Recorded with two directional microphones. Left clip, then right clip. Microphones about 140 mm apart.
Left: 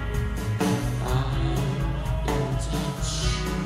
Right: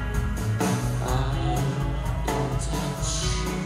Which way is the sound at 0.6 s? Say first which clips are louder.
Left 1 dB; 40° right (ahead or behind).